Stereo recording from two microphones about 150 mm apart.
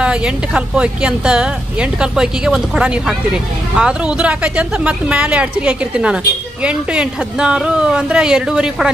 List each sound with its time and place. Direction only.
0.0 s speech: 5° right (ahead or behind)